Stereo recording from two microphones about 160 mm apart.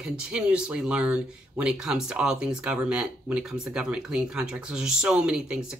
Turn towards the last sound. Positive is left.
turn(degrees=-5)  # may be behind; listen again after turning